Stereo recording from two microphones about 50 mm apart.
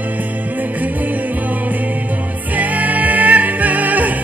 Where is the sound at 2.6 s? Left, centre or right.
Right.